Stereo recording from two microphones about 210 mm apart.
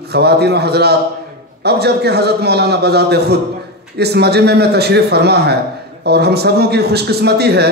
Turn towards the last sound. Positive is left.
turn(degrees=-50)  # may be behind; listen again after turning